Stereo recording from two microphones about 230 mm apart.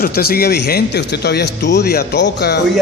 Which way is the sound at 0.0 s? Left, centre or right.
Left.